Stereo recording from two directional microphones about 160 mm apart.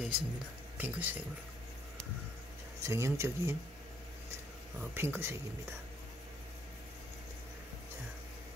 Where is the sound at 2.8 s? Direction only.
15° right (ahead or behind).